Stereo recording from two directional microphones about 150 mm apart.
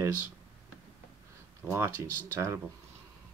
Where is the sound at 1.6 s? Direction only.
15° right (ahead or behind).